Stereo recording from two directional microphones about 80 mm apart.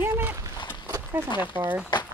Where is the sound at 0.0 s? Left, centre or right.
Right.